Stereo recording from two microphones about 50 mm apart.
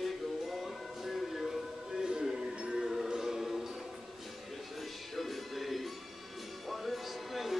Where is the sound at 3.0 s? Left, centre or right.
Centre.